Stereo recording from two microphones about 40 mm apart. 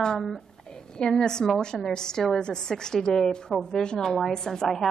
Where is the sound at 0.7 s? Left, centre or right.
Centre.